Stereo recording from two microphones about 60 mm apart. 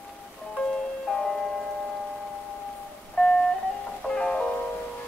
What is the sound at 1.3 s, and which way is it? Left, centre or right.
Rain on surface, centre.